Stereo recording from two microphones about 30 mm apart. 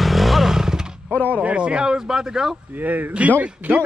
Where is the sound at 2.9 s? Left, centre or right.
Right.